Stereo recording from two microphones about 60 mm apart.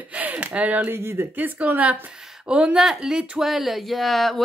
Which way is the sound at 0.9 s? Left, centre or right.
Right.